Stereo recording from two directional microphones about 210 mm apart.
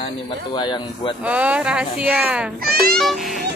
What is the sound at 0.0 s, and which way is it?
Speech, 20° left (ahead or behind).